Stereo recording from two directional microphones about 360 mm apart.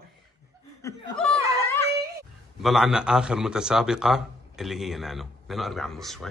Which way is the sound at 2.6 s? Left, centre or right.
Centre.